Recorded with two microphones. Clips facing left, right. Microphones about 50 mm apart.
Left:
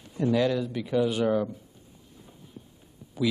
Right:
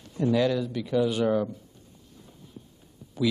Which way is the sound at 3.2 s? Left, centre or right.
Centre.